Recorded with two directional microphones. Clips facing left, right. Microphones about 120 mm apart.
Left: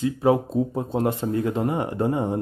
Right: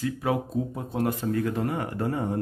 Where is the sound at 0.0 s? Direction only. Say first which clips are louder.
Left 7 dB; 30° left (ahead or behind).